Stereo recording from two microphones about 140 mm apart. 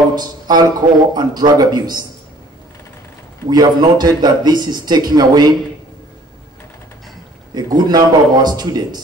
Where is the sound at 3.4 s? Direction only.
30° right (ahead or behind).